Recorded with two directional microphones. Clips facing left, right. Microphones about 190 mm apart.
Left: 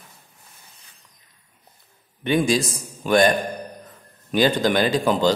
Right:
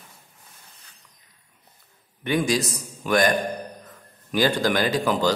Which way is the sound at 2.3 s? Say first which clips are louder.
Left 3 dB; 25° left (ahead or behind).